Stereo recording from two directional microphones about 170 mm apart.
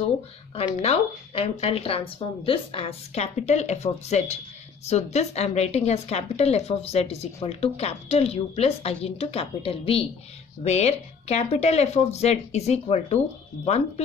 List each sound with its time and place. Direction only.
0.6 s speech: 35° left (ahead or behind)